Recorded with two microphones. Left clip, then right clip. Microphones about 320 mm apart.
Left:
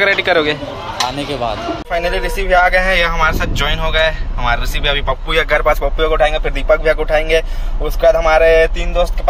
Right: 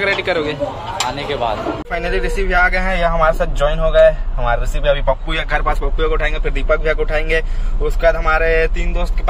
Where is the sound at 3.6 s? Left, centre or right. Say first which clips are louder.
Right 4 dB; right.